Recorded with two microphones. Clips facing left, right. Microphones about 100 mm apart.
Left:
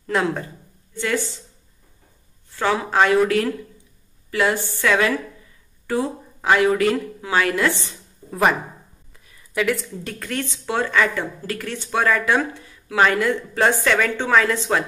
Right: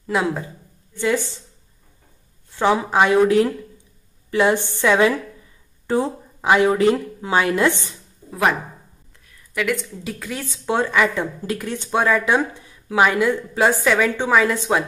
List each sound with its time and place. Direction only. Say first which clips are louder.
0.0 s speech: even; 10° right (ahead or behind)
2.5 s speech: right 2 dB; 20° right (ahead or behind)
8.3 s a woman's voice: left 1 dB; centre (ahead or behind)
10.6 s speech: right 2 dB; 15° right (ahead or behind)